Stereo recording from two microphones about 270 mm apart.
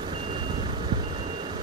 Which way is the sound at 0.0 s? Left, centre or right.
Centre.